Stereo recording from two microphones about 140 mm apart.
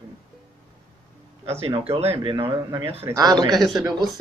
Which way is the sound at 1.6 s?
45° right (ahead or behind).